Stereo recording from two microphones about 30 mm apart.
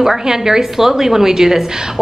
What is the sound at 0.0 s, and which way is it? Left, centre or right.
A woman's voice, centre.